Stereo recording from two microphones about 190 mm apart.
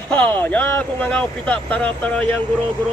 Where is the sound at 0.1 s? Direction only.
10° left (ahead or behind).